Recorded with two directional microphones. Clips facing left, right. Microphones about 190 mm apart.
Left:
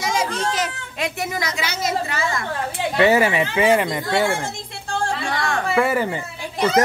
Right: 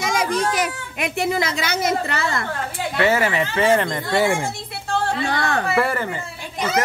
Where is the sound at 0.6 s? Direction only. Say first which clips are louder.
Right 1 dB; 20° right (ahead or behind).